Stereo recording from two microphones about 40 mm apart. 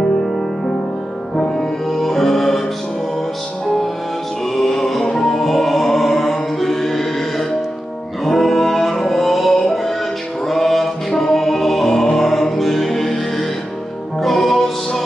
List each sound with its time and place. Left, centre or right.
1.3 s music: centre
1.9 s music: centre
4.6 s music: centre